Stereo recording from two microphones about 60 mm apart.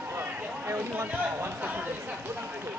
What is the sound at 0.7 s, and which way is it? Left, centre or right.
Speech, right.